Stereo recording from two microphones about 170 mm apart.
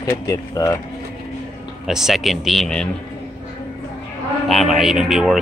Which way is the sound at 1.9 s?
5° right (ahead or behind).